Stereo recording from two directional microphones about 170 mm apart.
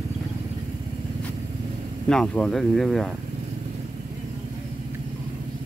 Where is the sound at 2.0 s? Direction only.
5° left (ahead or behind).